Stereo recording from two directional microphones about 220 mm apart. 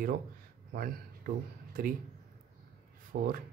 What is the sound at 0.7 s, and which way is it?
Speech, 40° right (ahead or behind).